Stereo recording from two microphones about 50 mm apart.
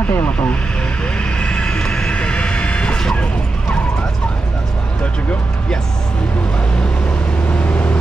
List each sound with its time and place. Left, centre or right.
0.1 s vehicle: left
1.4 s vehicle: centre
7.5 s vehicle: left